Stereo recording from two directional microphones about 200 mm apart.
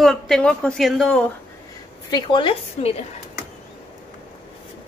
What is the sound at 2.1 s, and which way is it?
Speech, 25° left (ahead or behind).